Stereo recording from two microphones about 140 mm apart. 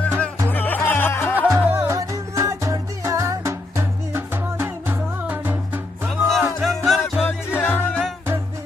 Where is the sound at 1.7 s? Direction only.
20° right (ahead or behind).